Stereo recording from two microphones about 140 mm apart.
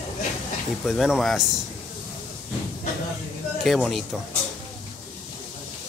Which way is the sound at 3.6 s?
Centre (ahead or behind).